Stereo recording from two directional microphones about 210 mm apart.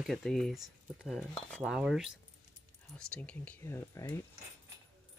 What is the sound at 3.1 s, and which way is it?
Speech, 5° left (ahead or behind).